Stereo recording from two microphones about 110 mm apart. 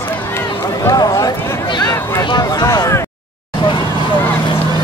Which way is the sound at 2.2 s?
40° left (ahead or behind).